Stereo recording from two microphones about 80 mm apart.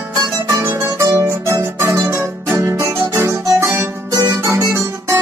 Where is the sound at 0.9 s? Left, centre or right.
Right.